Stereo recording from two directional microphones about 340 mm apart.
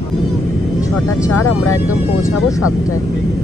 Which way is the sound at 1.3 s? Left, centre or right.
Left.